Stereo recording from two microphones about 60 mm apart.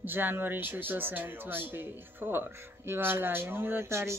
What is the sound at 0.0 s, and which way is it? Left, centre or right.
Speech, right.